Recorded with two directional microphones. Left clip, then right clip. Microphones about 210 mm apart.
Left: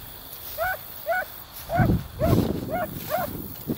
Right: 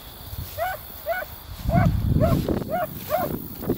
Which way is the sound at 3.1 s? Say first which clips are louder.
Right 3 dB; 55° right (ahead or behind).